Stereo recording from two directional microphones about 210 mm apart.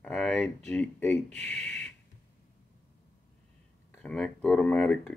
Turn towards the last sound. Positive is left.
turn(degrees=5)  # may be behind; listen again after turning